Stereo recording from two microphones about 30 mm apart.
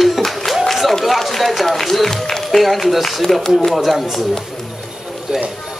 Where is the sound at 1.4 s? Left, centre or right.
Centre.